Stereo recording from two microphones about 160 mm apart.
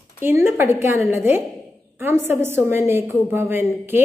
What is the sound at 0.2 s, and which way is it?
A woman's voice, 15° right (ahead or behind).